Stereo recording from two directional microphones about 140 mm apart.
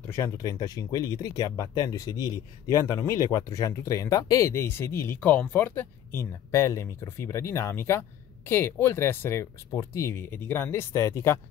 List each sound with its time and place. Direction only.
0.1 s speech: 25° left (ahead or behind)